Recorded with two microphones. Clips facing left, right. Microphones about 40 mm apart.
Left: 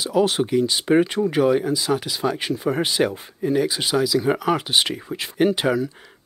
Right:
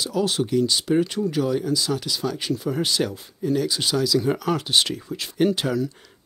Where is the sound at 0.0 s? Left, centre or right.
Left.